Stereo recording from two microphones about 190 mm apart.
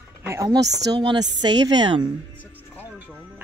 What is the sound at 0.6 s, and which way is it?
Speech, 65° right (ahead or behind).